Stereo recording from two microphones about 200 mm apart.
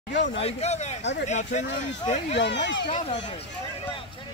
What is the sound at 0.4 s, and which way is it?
Speech, 30° left (ahead or behind).